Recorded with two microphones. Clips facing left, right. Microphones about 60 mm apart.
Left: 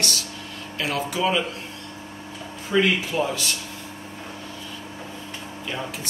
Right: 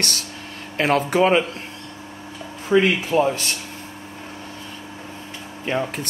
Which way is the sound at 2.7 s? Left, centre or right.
Right.